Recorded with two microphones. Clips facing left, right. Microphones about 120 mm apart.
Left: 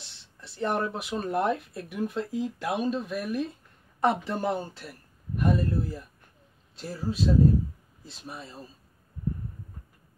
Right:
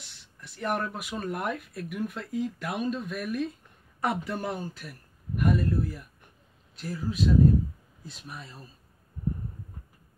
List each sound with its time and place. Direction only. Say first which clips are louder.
0.0 s speech: left 1 dB; 25° left (ahead or behind)